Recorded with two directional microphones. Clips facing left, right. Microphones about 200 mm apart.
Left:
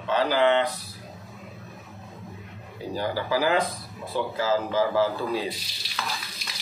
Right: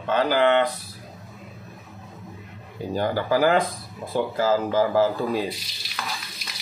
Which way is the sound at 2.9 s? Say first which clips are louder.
Right 4 dB; 50° right (ahead or behind).